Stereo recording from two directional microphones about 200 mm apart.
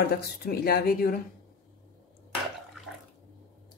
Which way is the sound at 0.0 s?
50° left (ahead or behind).